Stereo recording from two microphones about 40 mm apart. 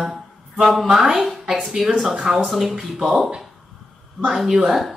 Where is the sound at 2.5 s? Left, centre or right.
Centre.